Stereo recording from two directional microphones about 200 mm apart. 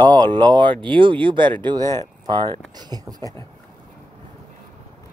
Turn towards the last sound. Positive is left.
turn(degrees=-20)  # may be behind; listen again after turning